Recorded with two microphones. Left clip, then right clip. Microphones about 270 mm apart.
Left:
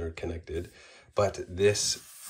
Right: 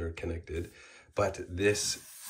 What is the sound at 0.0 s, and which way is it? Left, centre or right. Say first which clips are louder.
Speech: left 2 dB; centre.